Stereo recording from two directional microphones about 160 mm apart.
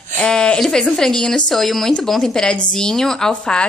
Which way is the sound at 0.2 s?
5° left (ahead or behind).